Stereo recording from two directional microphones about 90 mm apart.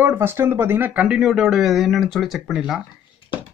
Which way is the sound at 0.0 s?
25° right (ahead or behind).